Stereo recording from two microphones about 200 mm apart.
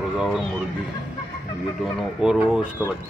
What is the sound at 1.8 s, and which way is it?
Speech, centre (ahead or behind).